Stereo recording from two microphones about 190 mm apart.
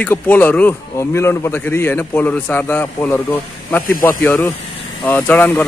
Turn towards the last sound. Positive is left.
turn(degrees=10)  # may be behind; listen again after turning